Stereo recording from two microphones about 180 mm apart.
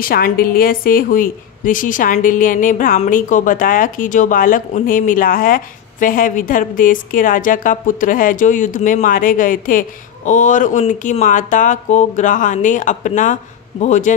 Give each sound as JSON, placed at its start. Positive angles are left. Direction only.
{"t": 0.0, "sound": "a woman's voice", "side_deg": 55}